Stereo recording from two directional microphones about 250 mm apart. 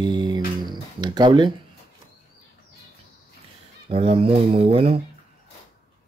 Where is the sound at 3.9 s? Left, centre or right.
Right.